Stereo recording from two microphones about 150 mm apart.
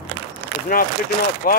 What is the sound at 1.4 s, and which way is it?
Speech, 75° left (ahead or behind).